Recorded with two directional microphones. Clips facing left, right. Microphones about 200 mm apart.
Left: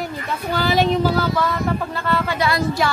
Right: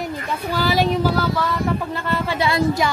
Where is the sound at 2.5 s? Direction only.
25° right (ahead or behind).